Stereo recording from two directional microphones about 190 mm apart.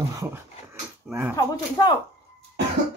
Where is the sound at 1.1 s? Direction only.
Centre (ahead or behind).